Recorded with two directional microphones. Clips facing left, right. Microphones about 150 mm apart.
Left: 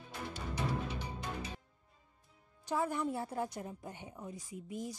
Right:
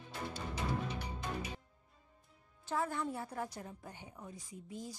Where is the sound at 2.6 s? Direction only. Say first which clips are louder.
Left 2 dB; 15° left (ahead or behind).